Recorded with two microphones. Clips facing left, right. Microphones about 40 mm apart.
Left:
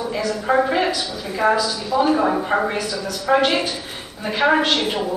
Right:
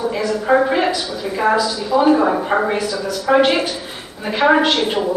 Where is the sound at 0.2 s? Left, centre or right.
Centre.